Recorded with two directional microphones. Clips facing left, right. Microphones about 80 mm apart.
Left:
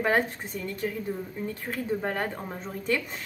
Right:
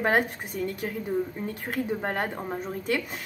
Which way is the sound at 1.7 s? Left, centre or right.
Right.